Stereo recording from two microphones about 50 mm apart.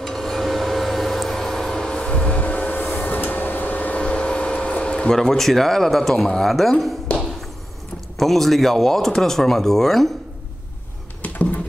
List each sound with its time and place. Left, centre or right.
0.0 s vehicle: centre
6.2 s speech: centre
8.2 s speech: centre
11.2 s a sound: left